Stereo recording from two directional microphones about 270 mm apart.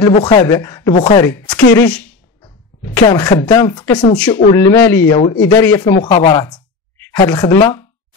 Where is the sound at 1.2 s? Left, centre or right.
Centre.